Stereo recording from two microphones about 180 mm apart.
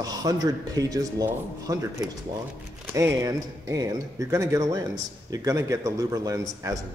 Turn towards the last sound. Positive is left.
turn(degrees=-20)  # may be behind; listen again after turning